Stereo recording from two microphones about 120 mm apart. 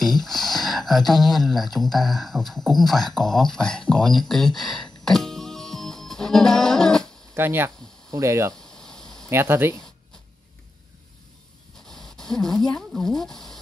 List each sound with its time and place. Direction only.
0.0 s speech: centre (ahead or behind)
7.3 s speech: 20° right (ahead or behind)
8.5 s a sound: 5° left (ahead or behind)
9.3 s speech: 20° right (ahead or behind)
11.9 s speech: 5° left (ahead or behind)